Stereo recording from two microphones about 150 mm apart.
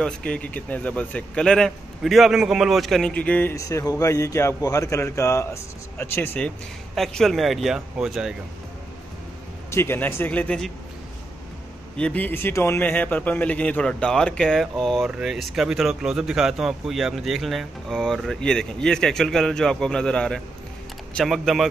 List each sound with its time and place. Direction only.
0.0 s speech: 5° left (ahead or behind)
3.5 s a man's voice: 20° left (ahead or behind)
7.0 s speech: centre (ahead or behind)
9.7 s speech: 15° left (ahead or behind)
12.0 s speech: 10° left (ahead or behind)